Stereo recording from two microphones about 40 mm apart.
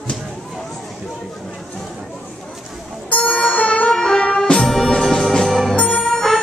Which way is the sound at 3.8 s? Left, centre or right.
Centre.